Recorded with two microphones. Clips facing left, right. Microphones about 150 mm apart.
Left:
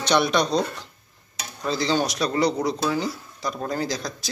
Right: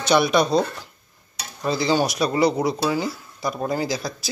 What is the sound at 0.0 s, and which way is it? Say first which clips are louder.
A man's voice: right 3 dB; 5° right (ahead or behind).